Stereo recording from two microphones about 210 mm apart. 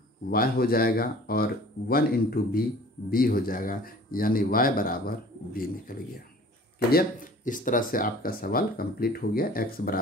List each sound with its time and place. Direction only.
0.3 s speech: 45° left (ahead or behind)